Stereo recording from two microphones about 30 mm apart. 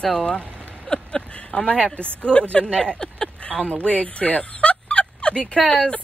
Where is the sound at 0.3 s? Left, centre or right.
Left.